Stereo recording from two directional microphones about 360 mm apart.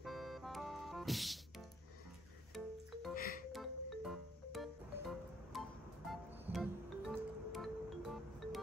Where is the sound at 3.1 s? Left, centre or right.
Left.